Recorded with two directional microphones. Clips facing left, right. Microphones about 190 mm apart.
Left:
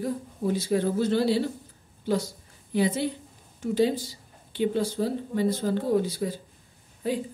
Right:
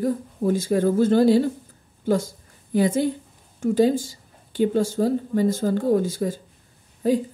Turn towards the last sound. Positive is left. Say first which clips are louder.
# right 8 dB
turn(degrees=-40)  # may be behind; listen again after turning